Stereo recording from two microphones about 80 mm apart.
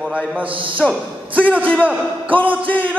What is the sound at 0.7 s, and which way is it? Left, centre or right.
Speech, centre.